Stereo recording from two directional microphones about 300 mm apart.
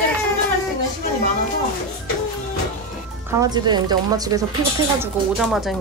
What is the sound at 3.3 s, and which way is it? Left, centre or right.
Speech, centre.